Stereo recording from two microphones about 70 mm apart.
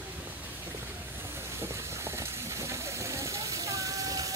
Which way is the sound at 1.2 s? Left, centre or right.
Right.